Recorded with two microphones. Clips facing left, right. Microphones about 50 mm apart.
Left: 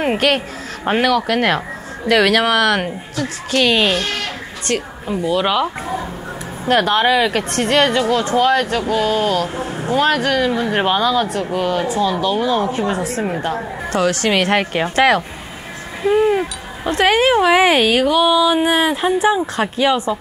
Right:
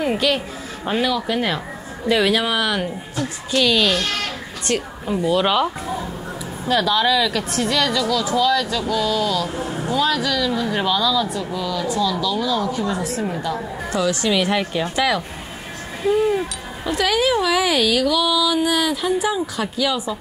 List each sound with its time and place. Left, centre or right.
0.2 s a woman's voice: left
0.8 s a woman's voice: left
1.1 s a woman's voice: left
4.0 s sheep: left
4.7 s a woman's voice: centre
6.7 s a woman's voice: left
9.6 s a woman's voice: left